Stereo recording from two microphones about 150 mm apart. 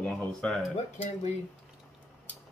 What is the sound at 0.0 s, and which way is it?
Speech, 10° left (ahead or behind).